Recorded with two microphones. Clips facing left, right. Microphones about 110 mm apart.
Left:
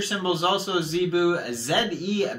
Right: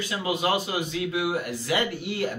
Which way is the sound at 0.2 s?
30° left (ahead or behind).